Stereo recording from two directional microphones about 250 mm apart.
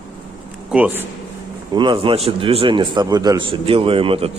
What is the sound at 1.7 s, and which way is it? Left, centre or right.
A man's voice, centre.